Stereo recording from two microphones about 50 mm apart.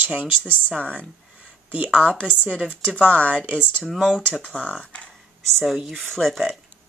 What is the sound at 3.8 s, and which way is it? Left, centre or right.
Speech, centre.